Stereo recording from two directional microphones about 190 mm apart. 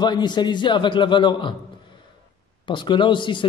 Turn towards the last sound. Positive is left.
turn(degrees=25)  # may be behind; listen again after turning